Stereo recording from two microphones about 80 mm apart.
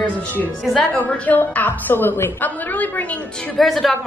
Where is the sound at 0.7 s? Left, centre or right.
Centre.